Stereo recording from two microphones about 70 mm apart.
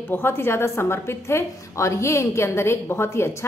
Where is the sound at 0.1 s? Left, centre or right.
Left.